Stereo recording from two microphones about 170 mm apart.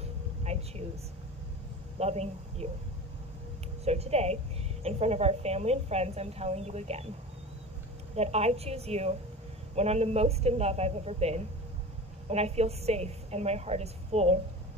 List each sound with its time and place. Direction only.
0.0 s a sound: 40° right (ahead or behind)
2.0 s a woman's voice: 40° right (ahead or behind)
3.8 s a woman's voice: 40° right (ahead or behind)
8.2 s a woman's voice: 40° right (ahead or behind)